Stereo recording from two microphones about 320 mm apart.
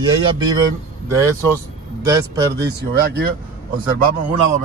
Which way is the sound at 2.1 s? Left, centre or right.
Centre.